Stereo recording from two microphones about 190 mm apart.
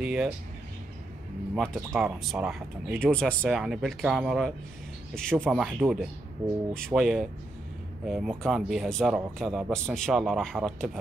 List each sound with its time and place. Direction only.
0.0 s speech: 5° right (ahead or behind)
1.5 s speech: centre (ahead or behind)
3.1 s speech: 5° left (ahead or behind)